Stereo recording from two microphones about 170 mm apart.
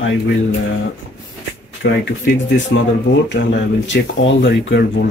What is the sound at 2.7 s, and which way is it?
Speech, 90° left.